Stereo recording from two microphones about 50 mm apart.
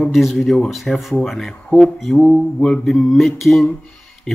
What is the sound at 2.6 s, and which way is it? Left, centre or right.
Mantra, centre.